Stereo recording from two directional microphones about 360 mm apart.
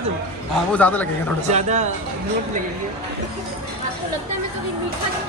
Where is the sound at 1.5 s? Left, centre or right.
Centre.